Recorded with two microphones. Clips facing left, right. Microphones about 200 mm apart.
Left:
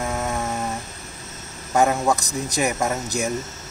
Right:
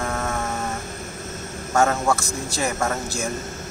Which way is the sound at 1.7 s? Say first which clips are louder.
Left 1 dB; 15° left (ahead or behind).